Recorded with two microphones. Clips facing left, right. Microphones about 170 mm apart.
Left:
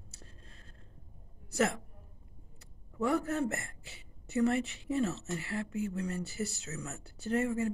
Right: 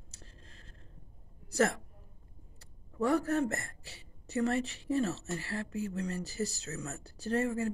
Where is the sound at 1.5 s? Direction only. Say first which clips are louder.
Right 2 dB; 20° left (ahead or behind).